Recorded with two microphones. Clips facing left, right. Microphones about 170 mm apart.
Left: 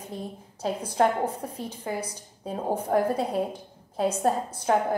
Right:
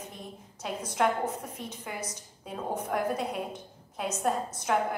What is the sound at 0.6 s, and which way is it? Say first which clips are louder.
A woman's voice: left 5 dB; 35° left (ahead or behind).